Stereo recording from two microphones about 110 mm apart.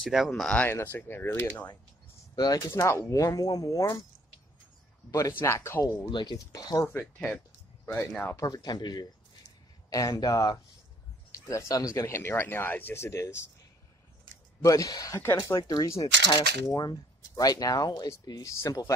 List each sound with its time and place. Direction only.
0.0 s speech: 5° right (ahead or behind)
0.4 s speech: 10° left (ahead or behind)
0.9 s speech: 20° left (ahead or behind)
2.3 s speech: 40° left (ahead or behind)
2.7 s speech: 25° left (ahead or behind)
5.4 s speech: 25° left (ahead or behind)
6.0 s speech: 40° left (ahead or behind)
7.0 s speech: 10° left (ahead or behind)
7.8 s speech: 25° left (ahead or behind)
8.4 s speech: 35° left (ahead or behind)
14.6 s speech: 30° left (ahead or behind)